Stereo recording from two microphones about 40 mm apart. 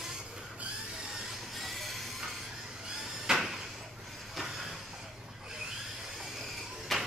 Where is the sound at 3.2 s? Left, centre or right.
Centre.